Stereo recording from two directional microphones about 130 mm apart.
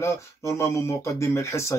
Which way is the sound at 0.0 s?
25° left (ahead or behind).